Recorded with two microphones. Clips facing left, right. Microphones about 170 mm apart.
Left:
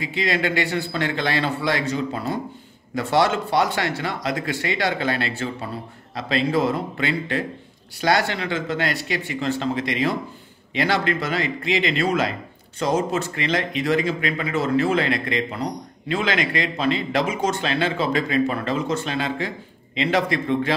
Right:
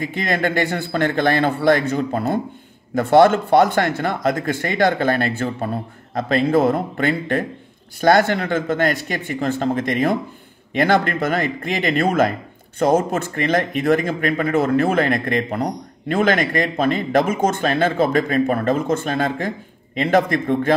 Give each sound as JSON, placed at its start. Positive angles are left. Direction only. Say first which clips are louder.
{"t": 0.0, "sound": "speech", "louder": "right 2 dB", "side_deg": -50}